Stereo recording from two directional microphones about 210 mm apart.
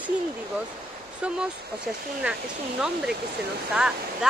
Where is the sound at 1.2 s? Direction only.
5° right (ahead or behind).